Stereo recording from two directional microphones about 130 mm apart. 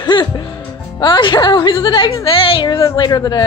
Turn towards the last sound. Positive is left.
turn(degrees=35)  # may be behind; listen again after turning